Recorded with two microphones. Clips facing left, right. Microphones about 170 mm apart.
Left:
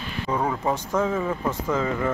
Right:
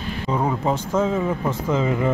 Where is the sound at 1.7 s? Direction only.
20° right (ahead or behind).